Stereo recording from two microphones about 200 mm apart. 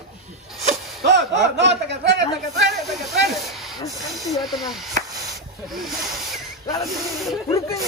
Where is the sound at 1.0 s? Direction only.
60° right (ahead or behind).